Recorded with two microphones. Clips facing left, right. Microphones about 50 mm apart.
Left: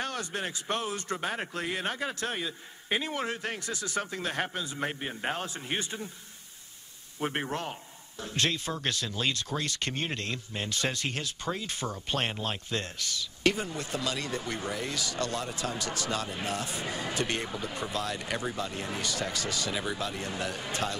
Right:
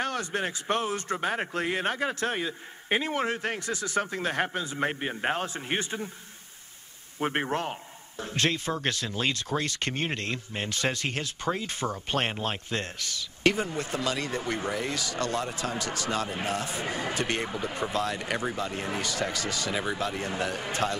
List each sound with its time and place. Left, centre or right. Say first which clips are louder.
0.0 s speech: right 4 dB; right
7.2 s speech: right 4 dB; right
19.7 s speech: right 3 dB; right